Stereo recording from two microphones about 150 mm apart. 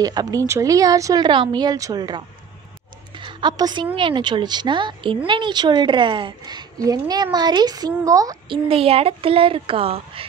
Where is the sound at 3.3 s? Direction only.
30° right (ahead or behind).